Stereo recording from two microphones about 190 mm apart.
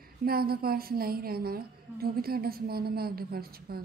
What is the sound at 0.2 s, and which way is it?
A woman's voice, 55° right (ahead or behind).